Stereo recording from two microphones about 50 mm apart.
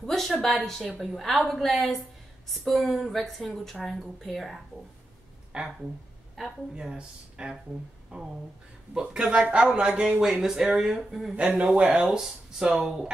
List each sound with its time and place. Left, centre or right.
0.0 s a sound: centre
0.3 s a woman's voice: centre
5.5 s a woman's voice: centre
11.5 s speech: right
11.9 s speech: centre